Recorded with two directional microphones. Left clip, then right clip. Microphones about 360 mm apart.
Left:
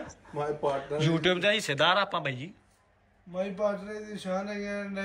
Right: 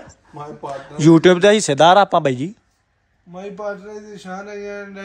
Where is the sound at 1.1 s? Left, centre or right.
Right.